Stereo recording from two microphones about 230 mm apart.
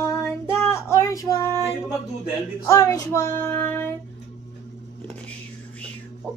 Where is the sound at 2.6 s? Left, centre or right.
Centre.